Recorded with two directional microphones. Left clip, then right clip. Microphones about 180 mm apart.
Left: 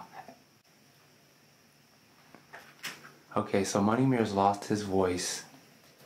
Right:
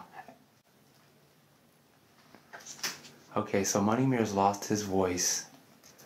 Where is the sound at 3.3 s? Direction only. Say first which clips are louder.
Left 1 dB; centre (ahead or behind).